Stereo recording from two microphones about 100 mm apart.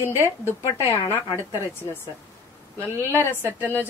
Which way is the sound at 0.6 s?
75° left (ahead or behind).